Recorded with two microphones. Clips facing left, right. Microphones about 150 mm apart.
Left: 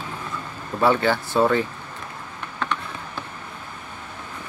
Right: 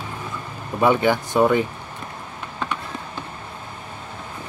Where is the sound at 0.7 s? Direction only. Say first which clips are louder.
Right 2 dB; 15° right (ahead or behind).